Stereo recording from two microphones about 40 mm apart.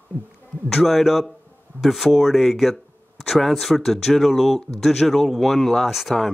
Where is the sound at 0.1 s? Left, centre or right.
Left.